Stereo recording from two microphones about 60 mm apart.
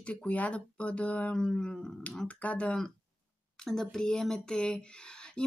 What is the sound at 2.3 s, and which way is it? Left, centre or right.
Speech, left.